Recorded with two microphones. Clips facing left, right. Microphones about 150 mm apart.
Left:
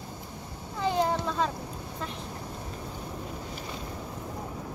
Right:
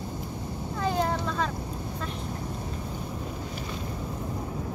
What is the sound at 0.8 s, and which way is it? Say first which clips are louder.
Boat: left 1 dB; 20° left (ahead or behind).